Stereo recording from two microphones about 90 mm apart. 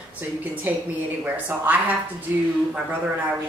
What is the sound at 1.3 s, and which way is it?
Speech, 20° right (ahead or behind).